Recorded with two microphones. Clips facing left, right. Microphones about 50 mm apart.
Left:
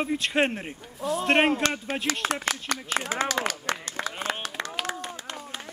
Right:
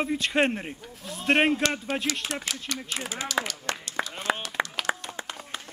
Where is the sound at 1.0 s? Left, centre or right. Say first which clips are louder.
Left 14 dB; left.